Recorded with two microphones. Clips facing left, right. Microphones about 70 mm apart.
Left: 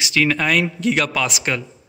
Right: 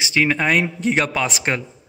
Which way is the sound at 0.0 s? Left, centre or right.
Right.